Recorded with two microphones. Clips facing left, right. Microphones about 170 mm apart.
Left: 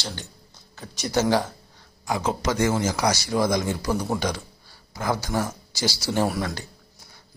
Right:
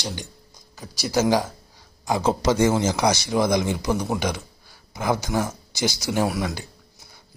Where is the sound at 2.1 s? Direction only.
30° right (ahead or behind).